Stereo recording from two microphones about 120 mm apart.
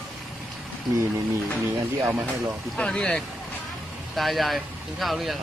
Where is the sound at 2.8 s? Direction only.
5° left (ahead or behind).